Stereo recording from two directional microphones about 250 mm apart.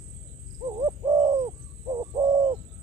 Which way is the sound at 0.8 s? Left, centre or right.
Centre.